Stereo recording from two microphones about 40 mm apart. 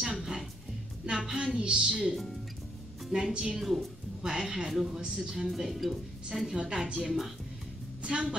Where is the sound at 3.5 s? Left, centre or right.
Centre.